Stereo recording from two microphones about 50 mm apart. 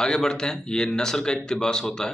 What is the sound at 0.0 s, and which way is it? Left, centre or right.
A man's voice, centre.